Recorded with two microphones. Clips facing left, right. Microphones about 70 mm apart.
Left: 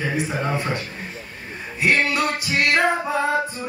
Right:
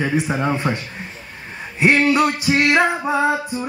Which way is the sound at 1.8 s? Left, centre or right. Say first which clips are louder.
Right 5 dB; right.